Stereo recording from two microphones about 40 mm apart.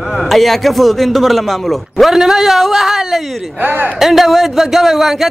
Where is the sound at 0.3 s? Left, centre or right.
Centre.